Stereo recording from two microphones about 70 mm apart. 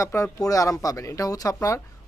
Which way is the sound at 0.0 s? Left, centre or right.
Left.